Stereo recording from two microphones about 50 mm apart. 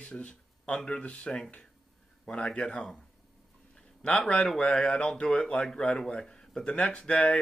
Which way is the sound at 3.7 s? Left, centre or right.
Left.